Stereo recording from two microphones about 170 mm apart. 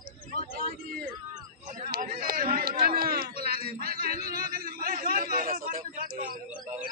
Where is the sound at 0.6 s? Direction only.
60° right (ahead or behind).